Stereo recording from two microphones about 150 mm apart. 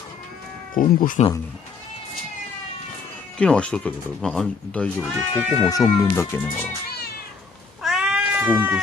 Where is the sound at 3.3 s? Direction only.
5° left (ahead or behind).